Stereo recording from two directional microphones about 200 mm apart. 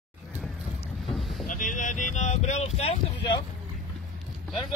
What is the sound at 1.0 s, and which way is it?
Boat, centre (ahead or behind).